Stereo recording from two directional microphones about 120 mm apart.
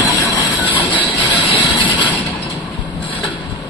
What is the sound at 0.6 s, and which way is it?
Train, 15° right (ahead or behind).